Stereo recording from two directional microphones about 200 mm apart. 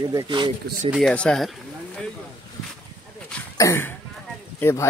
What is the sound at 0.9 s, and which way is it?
Speech, centre (ahead or behind).